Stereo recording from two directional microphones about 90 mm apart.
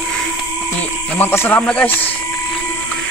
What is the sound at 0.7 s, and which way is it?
Music, 25° left (ahead or behind).